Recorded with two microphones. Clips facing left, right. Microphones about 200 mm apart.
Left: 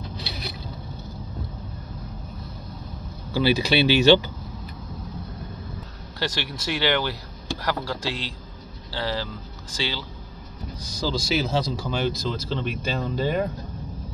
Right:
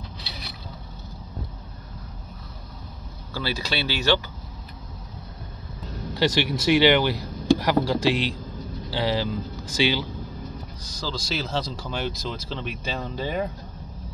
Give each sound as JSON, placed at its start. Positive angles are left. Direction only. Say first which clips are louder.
{"t": 3.3, "sound": "speech", "louder": "left 8 dB", "side_deg": 15}
{"t": 6.1, "sound": "speech", "louder": "right 7 dB", "side_deg": -15}
{"t": 11.0, "sound": "speech", "louder": "left 5 dB", "side_deg": 10}